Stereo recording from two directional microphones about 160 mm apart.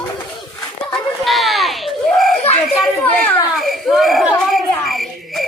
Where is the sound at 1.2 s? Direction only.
Centre (ahead or behind).